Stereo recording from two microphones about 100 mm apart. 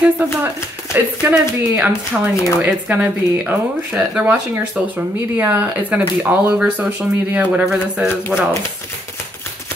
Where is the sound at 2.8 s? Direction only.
15° right (ahead or behind).